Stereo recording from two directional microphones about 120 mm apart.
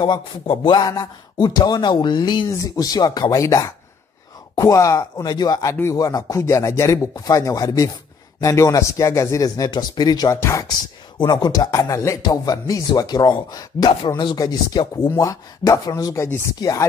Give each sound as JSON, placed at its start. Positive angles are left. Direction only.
{"t": 0.0, "sound": "speech", "side_deg": 40}
{"t": 11.1, "sound": "speech", "side_deg": 35}